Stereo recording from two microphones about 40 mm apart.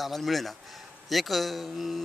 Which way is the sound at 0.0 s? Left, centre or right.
Centre.